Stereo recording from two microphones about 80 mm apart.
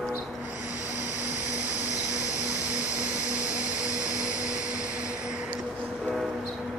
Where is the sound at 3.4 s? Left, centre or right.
Left.